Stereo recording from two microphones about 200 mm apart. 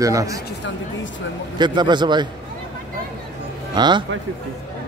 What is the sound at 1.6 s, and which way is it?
Speech, 20° right (ahead or behind).